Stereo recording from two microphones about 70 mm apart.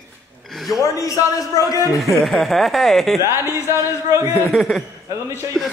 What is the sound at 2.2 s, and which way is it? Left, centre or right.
Speech, centre.